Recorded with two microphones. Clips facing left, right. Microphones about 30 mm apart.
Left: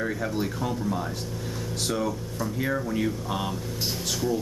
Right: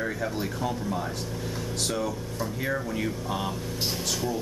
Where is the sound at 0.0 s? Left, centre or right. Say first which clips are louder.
Left 2 dB; centre.